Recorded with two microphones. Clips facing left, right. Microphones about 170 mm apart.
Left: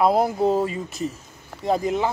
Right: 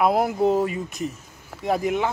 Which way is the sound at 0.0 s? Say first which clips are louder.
Left 1 dB; centre (ahead or behind).